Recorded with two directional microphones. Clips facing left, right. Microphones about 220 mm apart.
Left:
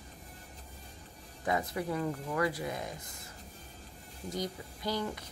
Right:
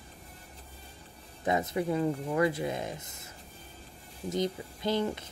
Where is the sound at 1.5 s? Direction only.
20° right (ahead or behind).